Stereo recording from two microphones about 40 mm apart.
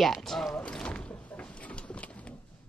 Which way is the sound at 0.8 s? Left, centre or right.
Left.